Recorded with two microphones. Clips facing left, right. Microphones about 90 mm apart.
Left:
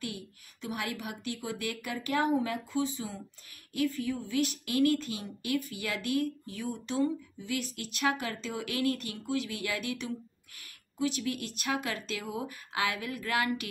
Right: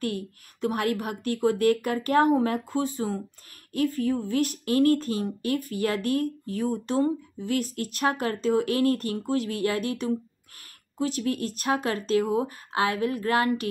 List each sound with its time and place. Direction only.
0.0 s speech: 50° right (ahead or behind)